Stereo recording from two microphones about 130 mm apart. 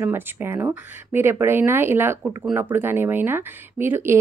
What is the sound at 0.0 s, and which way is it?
Speech, 15° right (ahead or behind).